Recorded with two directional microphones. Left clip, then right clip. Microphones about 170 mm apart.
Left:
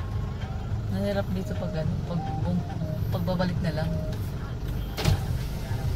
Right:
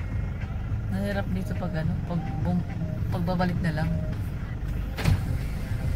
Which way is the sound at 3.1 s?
10° right (ahead or behind).